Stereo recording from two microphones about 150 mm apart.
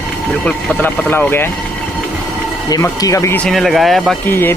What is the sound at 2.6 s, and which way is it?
Speech, 25° left (ahead or behind).